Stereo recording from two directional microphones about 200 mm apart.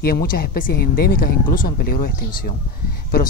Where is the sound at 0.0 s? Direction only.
50° left (ahead or behind).